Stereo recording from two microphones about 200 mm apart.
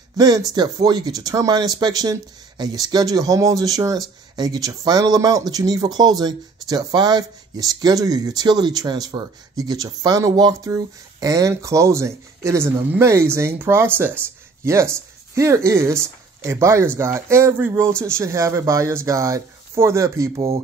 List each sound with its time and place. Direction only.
0.5 s speech: 20° right (ahead or behind)